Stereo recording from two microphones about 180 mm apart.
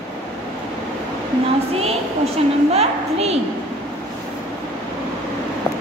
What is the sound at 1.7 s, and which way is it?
A woman's voice, 35° right (ahead or behind).